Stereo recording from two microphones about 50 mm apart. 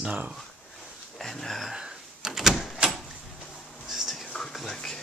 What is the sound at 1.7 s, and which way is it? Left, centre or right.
Door, centre.